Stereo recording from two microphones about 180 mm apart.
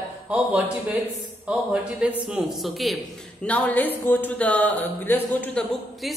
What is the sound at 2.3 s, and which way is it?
A man's voice, centre (ahead or behind).